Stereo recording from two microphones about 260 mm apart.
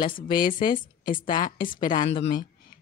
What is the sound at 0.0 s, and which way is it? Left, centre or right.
Speech, centre.